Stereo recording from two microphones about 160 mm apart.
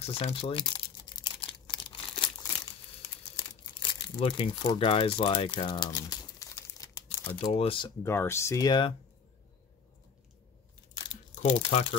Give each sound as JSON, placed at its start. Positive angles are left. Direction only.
{"t": 0.0, "sound": "crumpling", "side_deg": 40}
{"t": 4.2, "sound": "speech", "side_deg": 30}
{"t": 7.5, "sound": "speech", "side_deg": 35}
{"t": 8.0, "sound": "speech", "side_deg": 15}
{"t": 11.4, "sound": "speech", "side_deg": 35}